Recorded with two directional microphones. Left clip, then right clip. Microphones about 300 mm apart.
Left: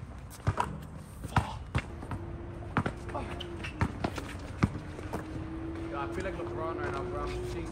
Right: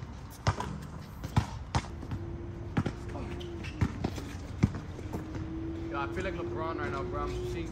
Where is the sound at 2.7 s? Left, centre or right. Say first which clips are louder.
Left 4 dB; centre.